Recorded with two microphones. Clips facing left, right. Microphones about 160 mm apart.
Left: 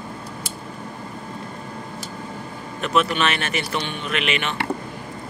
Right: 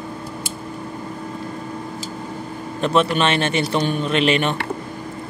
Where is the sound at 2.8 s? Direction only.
30° right (ahead or behind).